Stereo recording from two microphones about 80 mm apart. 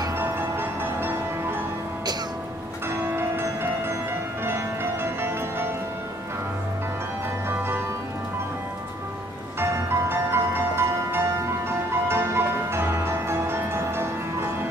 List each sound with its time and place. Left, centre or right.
0.2 s music: right
2.9 s church bell: right
5.0 s music: right
7.4 s music: right
9.6 s music: right